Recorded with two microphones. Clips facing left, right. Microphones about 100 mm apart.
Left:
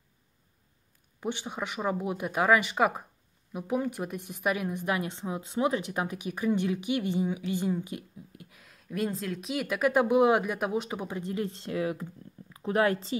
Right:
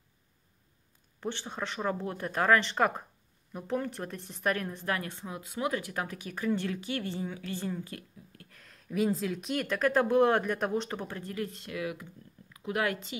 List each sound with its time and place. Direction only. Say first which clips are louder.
1.2 s a woman's voice: left 2 dB; 15° left (ahead or behind); by 13.2 s 30° left (ahead or behind)